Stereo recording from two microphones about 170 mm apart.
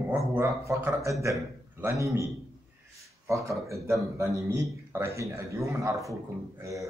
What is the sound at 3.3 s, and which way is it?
A man's voice, 20° right (ahead or behind).